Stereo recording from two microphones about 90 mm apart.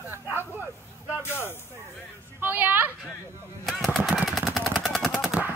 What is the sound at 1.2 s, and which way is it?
Speech, 25° left (ahead or behind).